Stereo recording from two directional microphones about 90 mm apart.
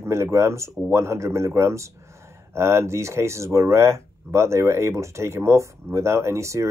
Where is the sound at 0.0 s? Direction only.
30° right (ahead or behind).